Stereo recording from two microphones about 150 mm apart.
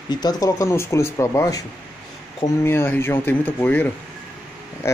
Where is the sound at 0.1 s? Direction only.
25° left (ahead or behind).